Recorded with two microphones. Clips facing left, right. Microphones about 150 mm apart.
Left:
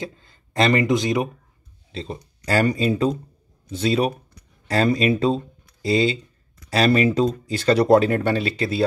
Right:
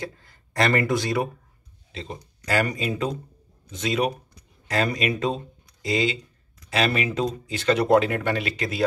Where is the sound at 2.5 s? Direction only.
35° left (ahead or behind).